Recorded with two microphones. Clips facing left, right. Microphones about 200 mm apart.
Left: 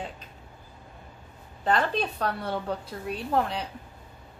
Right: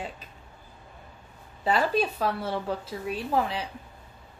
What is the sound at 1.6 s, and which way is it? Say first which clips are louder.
A woman's voice: right 1 dB; 5° right (ahead or behind).